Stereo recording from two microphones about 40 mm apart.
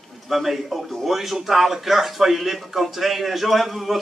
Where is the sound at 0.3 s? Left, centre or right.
Centre.